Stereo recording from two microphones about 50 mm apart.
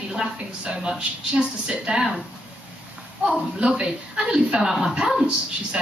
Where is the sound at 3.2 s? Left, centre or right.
Centre.